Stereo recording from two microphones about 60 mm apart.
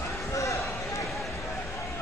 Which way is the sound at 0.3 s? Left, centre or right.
Left.